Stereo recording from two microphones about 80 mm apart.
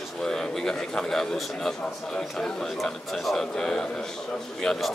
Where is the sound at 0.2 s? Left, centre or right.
Centre.